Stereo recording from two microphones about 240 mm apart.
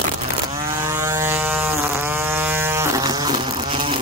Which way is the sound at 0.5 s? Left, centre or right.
Centre.